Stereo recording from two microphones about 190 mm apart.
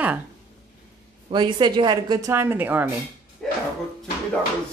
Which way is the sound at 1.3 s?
25° right (ahead or behind).